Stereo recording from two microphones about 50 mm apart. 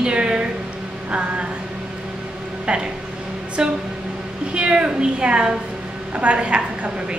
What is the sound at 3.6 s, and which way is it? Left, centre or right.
A woman's voice, centre.